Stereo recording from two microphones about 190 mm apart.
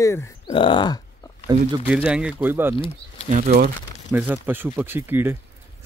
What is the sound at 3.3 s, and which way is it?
Speech, 40° right (ahead or behind).